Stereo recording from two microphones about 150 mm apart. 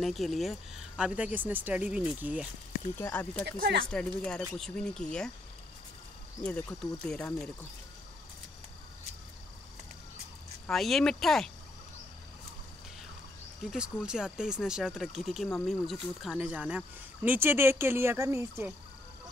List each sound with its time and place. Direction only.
0.0 s speech: centre (ahead or behind)
3.0 s speech: 10° left (ahead or behind)
3.4 s speech: 90° right
3.9 s speech: 5° left (ahead or behind)
7.1 s speech: 10° left (ahead or behind)
10.7 s speech: centre (ahead or behind)
13.7 s speech: 5° right (ahead or behind)